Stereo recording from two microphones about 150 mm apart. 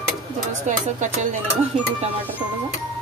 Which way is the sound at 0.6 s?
55° right (ahead or behind).